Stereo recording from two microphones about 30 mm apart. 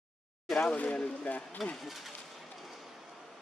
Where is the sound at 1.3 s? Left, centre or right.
Left.